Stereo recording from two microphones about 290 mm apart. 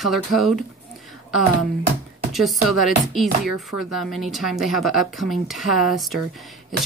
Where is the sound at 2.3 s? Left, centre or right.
Centre.